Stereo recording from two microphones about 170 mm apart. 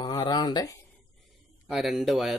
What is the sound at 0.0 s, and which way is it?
Speech, 25° left (ahead or behind).